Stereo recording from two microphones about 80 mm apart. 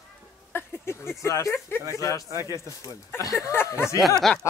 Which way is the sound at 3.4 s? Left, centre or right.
Left.